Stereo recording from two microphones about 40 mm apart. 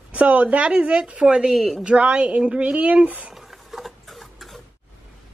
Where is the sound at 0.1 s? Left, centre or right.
Right.